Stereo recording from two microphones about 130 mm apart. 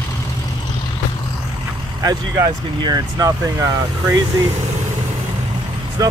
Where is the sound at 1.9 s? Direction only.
30° right (ahead or behind).